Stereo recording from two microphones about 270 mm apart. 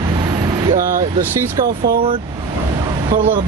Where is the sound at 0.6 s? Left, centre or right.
Right.